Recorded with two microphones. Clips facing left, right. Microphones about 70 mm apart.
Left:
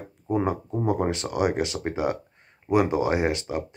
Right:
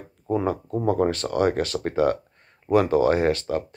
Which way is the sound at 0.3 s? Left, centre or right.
Centre.